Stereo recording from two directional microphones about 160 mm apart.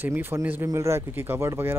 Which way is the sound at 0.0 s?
15° right (ahead or behind).